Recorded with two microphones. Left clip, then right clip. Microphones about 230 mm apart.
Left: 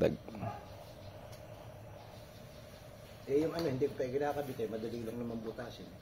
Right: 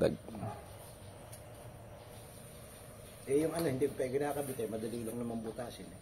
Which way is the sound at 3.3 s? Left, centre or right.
Right.